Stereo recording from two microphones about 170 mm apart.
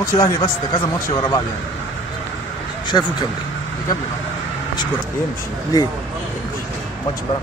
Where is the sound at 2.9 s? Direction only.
25° left (ahead or behind).